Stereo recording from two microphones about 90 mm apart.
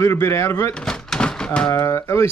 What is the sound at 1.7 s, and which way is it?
Speech, 30° left (ahead or behind).